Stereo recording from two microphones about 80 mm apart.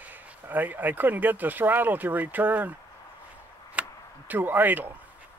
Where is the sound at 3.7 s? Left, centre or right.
Centre.